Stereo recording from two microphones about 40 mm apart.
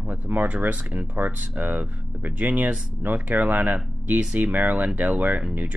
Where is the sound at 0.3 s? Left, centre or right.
Right.